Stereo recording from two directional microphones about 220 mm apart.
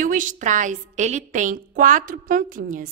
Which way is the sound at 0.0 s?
35° right (ahead or behind).